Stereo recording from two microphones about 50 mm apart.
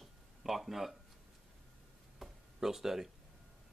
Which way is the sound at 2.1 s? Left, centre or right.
Centre.